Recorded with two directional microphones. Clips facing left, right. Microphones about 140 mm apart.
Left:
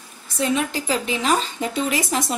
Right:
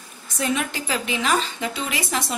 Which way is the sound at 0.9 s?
35° left (ahead or behind).